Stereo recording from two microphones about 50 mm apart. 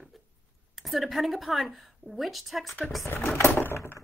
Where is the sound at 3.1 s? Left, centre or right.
Left.